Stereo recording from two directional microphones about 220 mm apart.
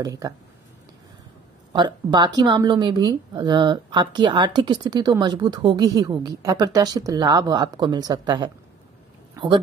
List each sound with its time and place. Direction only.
0.0 s speech: 15° right (ahead or behind)
1.7 s speech: 20° right (ahead or behind)
9.3 s a sound: 20° right (ahead or behind)